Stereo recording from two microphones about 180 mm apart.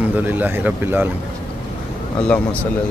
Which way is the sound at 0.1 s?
10° right (ahead or behind).